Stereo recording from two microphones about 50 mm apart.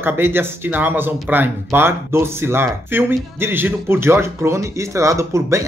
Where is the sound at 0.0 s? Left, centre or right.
Right.